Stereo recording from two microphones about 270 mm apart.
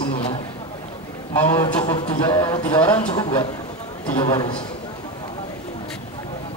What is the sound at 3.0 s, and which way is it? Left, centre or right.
A man's voice, centre.